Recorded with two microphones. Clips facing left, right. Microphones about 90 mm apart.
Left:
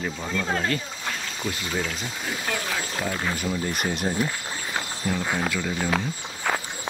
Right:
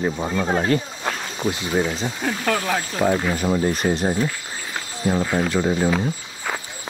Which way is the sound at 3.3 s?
40° right (ahead or behind).